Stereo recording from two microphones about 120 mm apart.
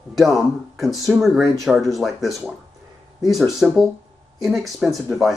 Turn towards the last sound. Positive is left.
turn(degrees=0)  # may be behind; listen again after turning